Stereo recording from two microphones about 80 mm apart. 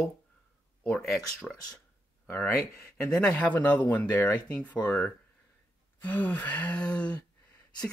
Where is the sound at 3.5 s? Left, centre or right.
Left.